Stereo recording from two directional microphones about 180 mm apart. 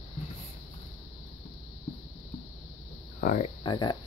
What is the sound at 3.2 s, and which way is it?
Speech, 50° left (ahead or behind).